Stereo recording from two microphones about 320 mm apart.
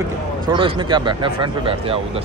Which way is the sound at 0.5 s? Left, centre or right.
Centre.